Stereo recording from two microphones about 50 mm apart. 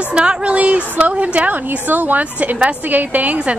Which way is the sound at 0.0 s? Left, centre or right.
Centre.